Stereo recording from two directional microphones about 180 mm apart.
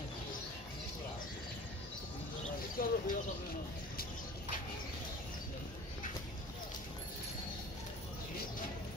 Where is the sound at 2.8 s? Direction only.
50° left (ahead or behind).